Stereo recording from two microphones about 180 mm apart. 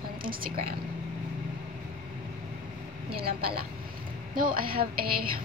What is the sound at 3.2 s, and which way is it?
A woman's voice, 60° right (ahead or behind).